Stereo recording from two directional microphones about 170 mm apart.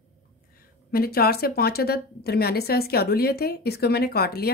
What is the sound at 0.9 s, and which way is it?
A woman's voice, 65° left (ahead or behind).